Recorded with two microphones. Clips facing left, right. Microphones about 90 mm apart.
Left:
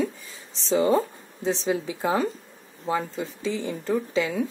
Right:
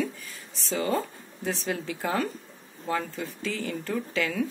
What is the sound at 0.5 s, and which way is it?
A woman's voice, 20° left (ahead or behind).